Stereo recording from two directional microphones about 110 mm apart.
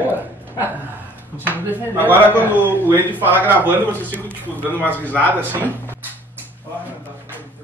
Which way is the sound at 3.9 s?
15° left (ahead or behind).